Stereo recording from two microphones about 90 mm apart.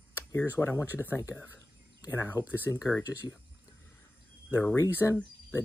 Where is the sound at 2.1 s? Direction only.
25° left (ahead or behind).